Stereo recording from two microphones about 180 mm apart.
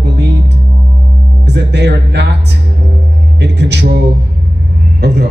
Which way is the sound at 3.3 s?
70° right (ahead or behind).